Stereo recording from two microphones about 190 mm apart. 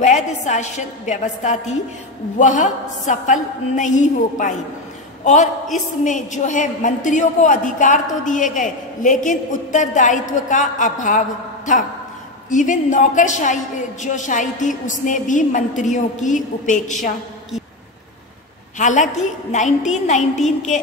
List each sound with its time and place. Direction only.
0.0 s a woman's voice: 40° left (ahead or behind)
18.8 s a woman's voice: 40° left (ahead or behind)